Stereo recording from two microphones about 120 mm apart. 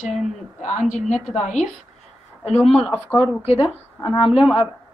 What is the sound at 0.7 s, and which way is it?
Speech, 75° left (ahead or behind).